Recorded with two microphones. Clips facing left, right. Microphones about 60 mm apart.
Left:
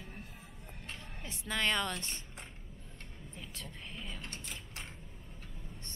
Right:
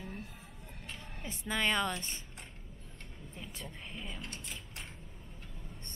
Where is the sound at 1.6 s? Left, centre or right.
Centre.